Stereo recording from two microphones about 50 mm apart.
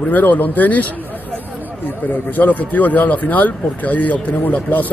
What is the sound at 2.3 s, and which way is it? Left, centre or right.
Speech, left.